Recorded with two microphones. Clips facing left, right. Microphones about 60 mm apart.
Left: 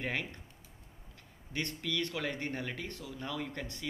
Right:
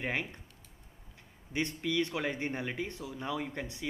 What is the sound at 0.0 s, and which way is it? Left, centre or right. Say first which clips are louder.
Speech: right 2 dB; centre.